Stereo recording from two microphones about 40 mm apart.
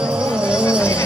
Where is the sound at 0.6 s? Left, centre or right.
Right.